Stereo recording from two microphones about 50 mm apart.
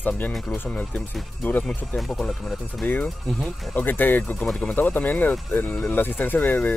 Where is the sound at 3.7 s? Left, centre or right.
Left.